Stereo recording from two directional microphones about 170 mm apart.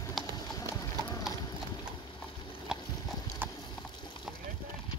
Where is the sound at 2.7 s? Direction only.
5° right (ahead or behind).